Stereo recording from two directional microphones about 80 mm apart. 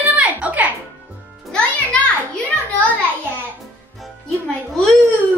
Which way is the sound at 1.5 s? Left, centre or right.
Centre.